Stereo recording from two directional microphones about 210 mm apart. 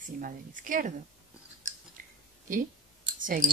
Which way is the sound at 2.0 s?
40° right (ahead or behind).